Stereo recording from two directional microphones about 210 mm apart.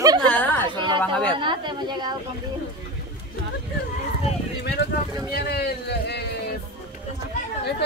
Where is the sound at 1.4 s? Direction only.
20° right (ahead or behind).